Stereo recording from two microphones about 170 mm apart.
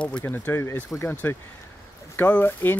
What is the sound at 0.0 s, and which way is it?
Speech, 10° left (ahead or behind).